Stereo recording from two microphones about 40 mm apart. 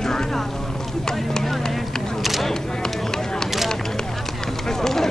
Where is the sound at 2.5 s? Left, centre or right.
Centre.